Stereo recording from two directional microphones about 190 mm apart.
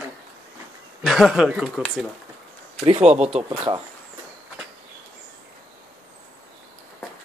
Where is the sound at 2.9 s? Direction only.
35° right (ahead or behind).